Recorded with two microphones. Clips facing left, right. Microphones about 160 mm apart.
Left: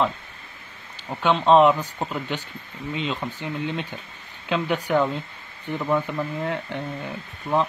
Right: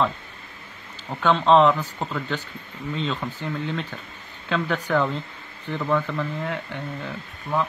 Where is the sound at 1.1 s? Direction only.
5° left (ahead or behind).